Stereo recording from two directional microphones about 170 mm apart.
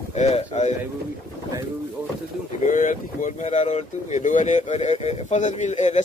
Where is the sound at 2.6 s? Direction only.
50° left (ahead or behind).